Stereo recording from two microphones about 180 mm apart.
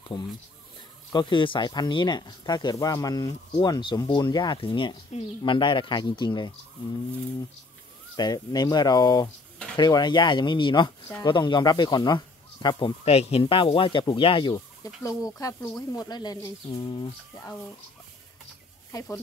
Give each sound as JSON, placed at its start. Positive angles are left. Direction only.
{"t": 0.1, "sound": "speech", "side_deg": 20}
{"t": 8.2, "sound": "speech", "side_deg": 20}
{"t": 18.9, "sound": "speech", "side_deg": 15}